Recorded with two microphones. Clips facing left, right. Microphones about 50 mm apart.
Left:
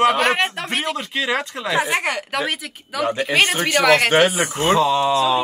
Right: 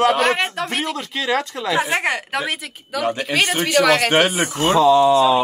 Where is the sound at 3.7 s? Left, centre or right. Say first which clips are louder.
Even; left.